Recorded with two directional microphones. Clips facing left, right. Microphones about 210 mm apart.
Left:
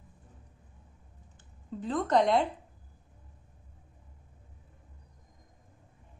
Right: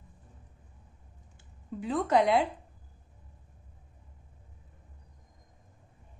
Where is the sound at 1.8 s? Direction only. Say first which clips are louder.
Even; 10° right (ahead or behind).